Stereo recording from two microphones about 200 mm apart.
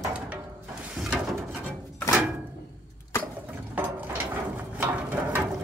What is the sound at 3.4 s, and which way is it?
Ratchet, 10° right (ahead or behind).